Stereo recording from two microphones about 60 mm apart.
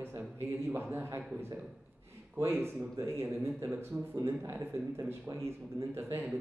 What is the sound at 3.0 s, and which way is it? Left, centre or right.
Speech, right.